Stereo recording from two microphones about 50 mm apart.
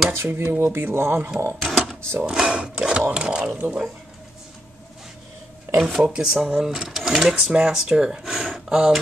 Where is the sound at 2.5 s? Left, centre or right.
Centre.